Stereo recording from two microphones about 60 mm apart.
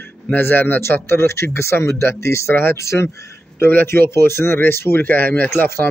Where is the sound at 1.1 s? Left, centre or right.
Left.